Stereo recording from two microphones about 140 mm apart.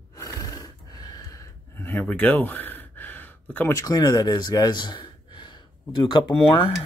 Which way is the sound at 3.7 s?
30° left (ahead or behind).